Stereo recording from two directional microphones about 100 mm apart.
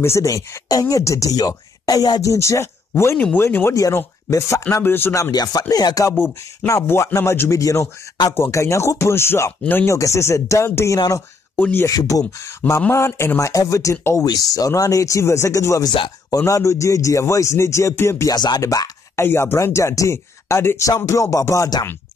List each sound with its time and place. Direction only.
0.0 s speech: 30° left (ahead or behind)
2.3 s speech: 30° left (ahead or behind)
6.6 s speech: 25° left (ahead or behind)
9.9 s speech: 30° left (ahead or behind)
11.5 s speech: 15° left (ahead or behind)
11.8 s speech: 35° left (ahead or behind)
18.3 s speech: 45° left (ahead or behind)
18.6 s speech: 35° left (ahead or behind)